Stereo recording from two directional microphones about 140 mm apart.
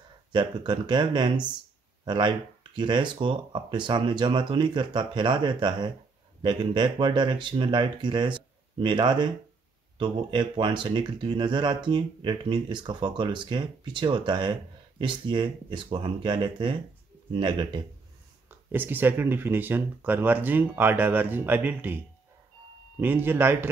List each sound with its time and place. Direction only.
0.3 s speech: 35° right (ahead or behind)
18.7 s speech: 15° right (ahead or behind)